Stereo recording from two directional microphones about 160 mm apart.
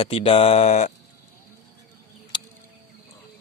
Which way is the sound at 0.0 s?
35° left (ahead or behind).